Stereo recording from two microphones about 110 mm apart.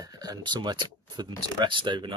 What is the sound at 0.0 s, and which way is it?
Speech, 40° right (ahead or behind).